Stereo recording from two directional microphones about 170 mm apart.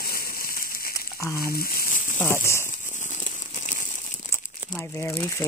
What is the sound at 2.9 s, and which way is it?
Crumpling, 45° left (ahead or behind).